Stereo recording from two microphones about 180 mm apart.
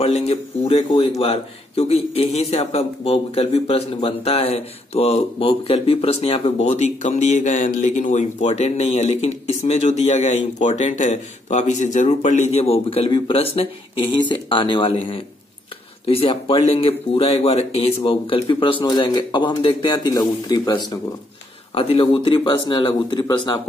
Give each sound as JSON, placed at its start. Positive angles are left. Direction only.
{"t": 0.0, "sound": "speech", "side_deg": 35}